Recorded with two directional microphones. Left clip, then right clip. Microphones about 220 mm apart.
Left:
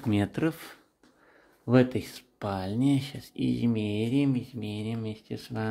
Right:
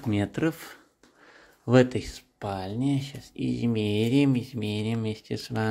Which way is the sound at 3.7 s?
15° right (ahead or behind).